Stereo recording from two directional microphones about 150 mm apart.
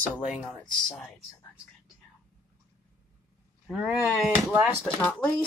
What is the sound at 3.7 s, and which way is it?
Speech, 5° right (ahead or behind).